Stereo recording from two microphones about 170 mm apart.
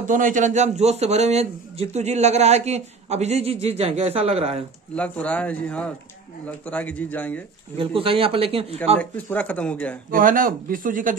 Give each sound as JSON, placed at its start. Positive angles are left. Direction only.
{"t": 0.0, "sound": "a man's voice", "side_deg": -50}
{"t": 4.9, "sound": "speech", "side_deg": 5}
{"t": 7.7, "sound": "a man's voice", "side_deg": -30}
{"t": 9.1, "sound": "speech", "side_deg": 10}
{"t": 10.1, "sound": "a man's voice", "side_deg": -55}